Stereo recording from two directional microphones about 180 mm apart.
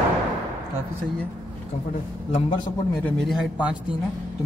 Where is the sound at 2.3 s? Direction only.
30° left (ahead or behind).